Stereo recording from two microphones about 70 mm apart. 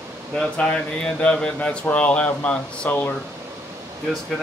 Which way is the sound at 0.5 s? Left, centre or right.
Centre.